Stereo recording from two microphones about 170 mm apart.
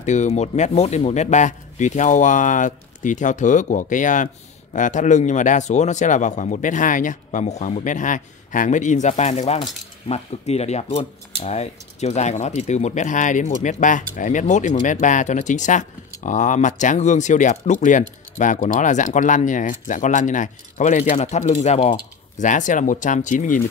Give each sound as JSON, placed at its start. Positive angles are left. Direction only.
{"t": 0.0, "sound": "speech", "side_deg": 45}